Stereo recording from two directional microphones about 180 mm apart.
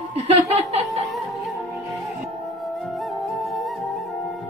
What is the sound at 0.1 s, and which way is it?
Snicker, 35° right (ahead or behind).